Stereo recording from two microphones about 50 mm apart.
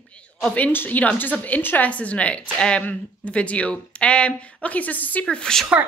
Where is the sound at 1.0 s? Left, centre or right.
Left.